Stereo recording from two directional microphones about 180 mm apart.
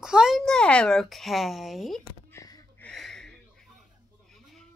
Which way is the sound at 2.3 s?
15° left (ahead or behind).